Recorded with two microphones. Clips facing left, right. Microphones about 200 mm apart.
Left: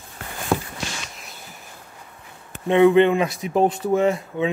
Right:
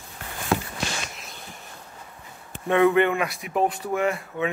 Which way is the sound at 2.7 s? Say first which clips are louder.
Left 5 dB; 20° left (ahead or behind).